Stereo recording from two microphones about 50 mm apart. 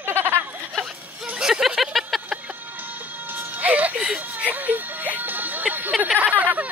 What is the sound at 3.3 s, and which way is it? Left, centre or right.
Music, right.